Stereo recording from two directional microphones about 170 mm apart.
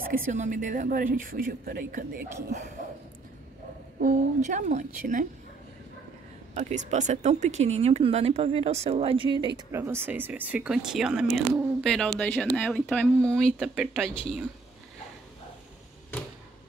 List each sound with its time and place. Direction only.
0.0 s a woman's voice: 50° right (ahead or behind)
4.0 s a woman's voice: 50° right (ahead or behind)
6.5 s speech: 45° right (ahead or behind); by 9.5 s 30° right (ahead or behind)
9.7 s speech: 15° right (ahead or behind)